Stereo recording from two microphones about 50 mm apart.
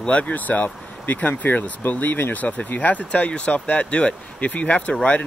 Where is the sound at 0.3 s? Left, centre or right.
Left.